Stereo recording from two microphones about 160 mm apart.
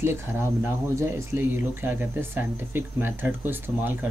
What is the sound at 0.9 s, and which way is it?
Speech, 15° right (ahead or behind).